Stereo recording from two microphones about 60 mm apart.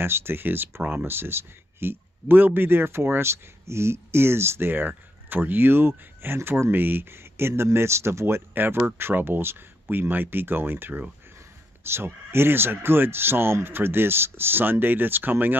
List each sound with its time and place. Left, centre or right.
0.0 s speech: right
8.5 s speech: right